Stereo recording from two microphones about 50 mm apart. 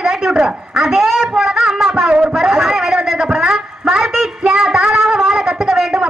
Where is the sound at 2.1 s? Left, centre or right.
Right.